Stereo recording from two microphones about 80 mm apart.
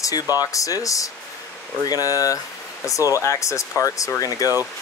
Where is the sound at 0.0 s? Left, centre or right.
Left.